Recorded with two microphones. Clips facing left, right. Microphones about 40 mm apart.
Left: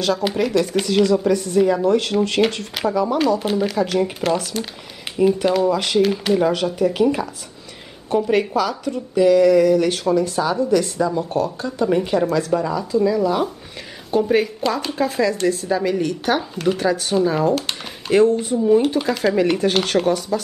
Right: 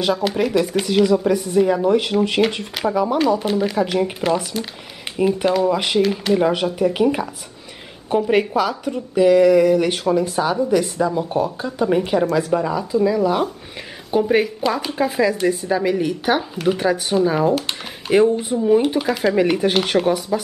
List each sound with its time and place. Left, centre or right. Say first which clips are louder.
0.2 s speech: even; centre
5.7 s speech: even; centre
8.3 s speech: right 2 dB; centre